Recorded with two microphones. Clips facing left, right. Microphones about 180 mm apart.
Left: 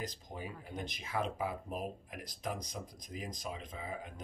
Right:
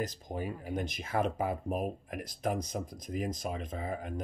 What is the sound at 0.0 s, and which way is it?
Speech, 50° right (ahead or behind).